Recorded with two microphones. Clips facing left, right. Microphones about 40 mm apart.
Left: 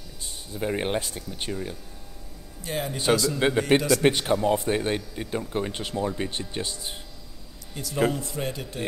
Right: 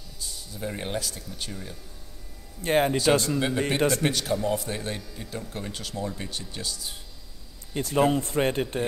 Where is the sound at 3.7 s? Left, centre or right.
Left.